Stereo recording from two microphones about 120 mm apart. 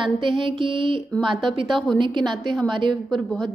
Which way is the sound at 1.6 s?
Centre (ahead or behind).